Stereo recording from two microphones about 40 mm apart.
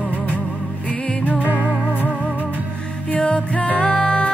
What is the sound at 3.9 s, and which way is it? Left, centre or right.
Music, left.